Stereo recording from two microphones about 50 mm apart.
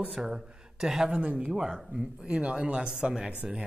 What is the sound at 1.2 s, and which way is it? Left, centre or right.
Speech, right.